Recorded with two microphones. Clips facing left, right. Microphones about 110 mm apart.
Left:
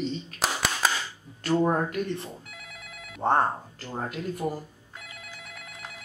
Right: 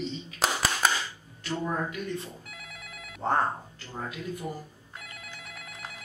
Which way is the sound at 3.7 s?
45° left (ahead or behind).